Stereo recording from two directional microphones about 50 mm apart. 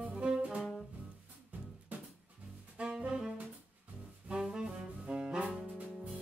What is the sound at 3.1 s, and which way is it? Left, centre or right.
Saxophone, centre.